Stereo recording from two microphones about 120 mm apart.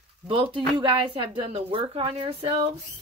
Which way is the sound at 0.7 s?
45° right (ahead or behind).